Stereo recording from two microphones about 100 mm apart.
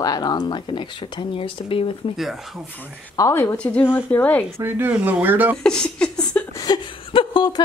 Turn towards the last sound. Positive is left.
turn(degrees=55)  # may be behind; listen again after turning